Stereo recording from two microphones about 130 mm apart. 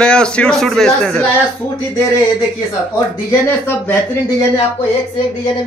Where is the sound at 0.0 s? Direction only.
5° left (ahead or behind).